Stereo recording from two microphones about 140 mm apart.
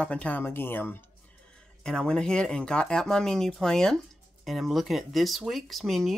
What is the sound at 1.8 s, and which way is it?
Speech, 5° left (ahead or behind).